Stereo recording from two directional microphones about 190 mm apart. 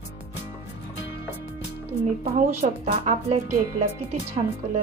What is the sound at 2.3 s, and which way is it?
Speech, 35° right (ahead or behind).